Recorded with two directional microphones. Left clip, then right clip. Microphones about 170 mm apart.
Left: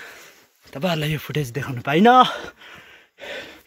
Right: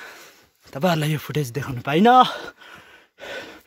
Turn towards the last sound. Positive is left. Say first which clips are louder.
# even
turn(degrees=-45)  # may be behind; listen again after turning